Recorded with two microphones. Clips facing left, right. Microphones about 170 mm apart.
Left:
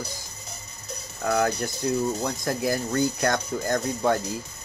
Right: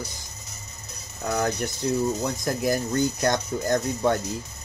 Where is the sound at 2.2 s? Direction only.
20° right (ahead or behind).